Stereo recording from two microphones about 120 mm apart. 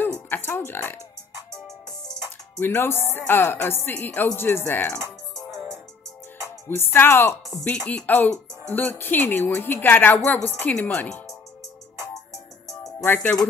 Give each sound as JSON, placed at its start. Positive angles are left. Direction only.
{"t": 0.0, "sound": "speech", "side_deg": 15}
{"t": 2.6, "sound": "speech", "side_deg": 20}
{"t": 6.7, "sound": "speech", "side_deg": 20}
{"t": 7.6, "sound": "speech", "side_deg": 10}
{"t": 13.0, "sound": "speech", "side_deg": 15}